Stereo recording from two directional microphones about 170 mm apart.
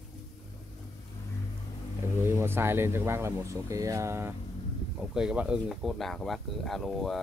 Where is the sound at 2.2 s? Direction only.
15° right (ahead or behind).